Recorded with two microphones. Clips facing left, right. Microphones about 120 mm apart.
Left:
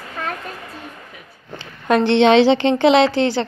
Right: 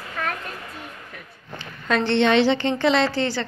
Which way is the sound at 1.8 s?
50° left (ahead or behind).